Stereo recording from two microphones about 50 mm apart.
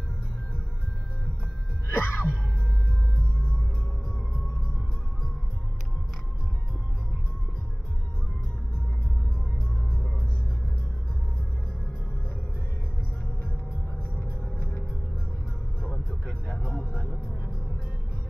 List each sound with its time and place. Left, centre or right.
1.9 s music: left
14.6 s music: left
16.1 s vehicle: centre